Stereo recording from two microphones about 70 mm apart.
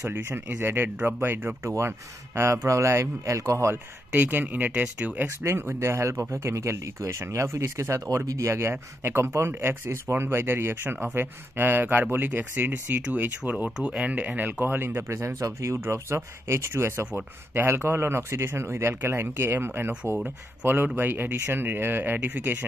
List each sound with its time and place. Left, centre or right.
0.1 s speech: right
4.1 s speech: right
5.4 s speech: right